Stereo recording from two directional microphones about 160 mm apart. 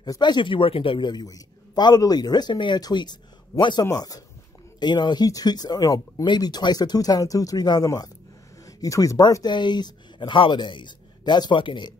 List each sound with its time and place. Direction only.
0.0 s a man's voice: 25° left (ahead or behind)